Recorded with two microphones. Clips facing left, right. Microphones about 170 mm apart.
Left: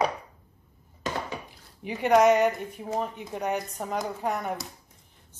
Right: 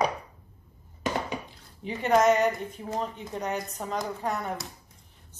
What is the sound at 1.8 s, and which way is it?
A woman's voice, 10° left (ahead or behind).